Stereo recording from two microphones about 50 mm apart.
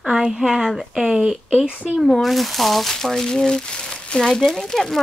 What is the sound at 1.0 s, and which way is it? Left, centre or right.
Speech, centre.